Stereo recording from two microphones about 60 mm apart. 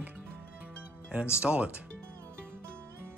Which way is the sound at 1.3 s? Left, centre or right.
Centre.